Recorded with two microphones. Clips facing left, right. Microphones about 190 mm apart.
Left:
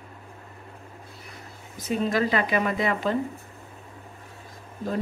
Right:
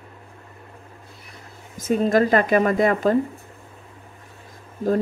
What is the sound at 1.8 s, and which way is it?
Speech, 45° right (ahead or behind).